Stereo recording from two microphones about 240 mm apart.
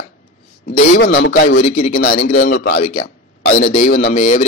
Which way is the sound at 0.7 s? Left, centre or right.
Left.